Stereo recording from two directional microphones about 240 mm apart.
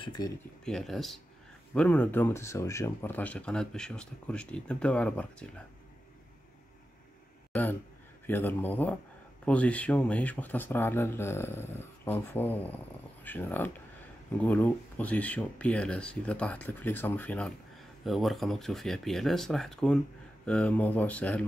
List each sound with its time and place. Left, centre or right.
0.0 s speech: centre
0.7 s speech: centre
8.3 s speech: centre